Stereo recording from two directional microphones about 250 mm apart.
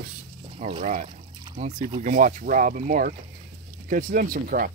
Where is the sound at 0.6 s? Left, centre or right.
Right.